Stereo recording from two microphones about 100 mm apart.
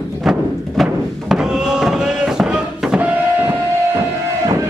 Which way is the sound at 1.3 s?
5° right (ahead or behind).